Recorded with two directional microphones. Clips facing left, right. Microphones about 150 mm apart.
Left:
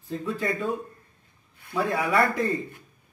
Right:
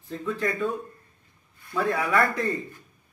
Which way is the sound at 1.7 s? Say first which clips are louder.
Even; 15° left (ahead or behind).